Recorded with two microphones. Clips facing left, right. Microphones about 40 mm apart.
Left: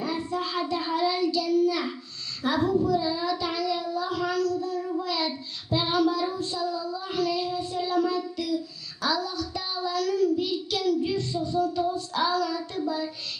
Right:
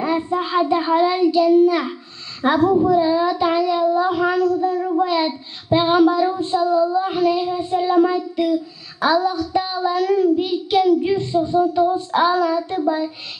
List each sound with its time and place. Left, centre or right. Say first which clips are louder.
0.0 s child singing: right 9 dB; right